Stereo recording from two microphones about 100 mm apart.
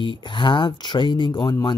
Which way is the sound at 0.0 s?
55° left (ahead or behind).